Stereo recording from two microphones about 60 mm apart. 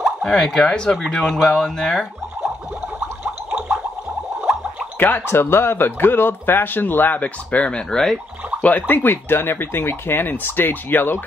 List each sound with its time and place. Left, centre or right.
0.0 s speech: centre
4.9 s a man's voice: left
8.6 s a man's voice: left